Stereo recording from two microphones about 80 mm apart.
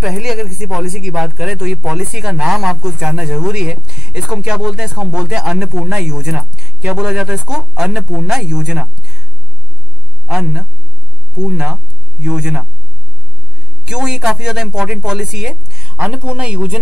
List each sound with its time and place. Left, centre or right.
0.0 s speech: centre
10.2 s a man's voice: centre
13.8 s a woman's voice: centre